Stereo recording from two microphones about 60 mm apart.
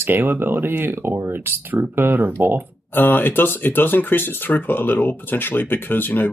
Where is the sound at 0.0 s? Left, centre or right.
Right.